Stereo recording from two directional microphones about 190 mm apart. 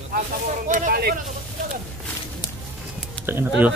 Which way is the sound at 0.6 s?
40° right (ahead or behind).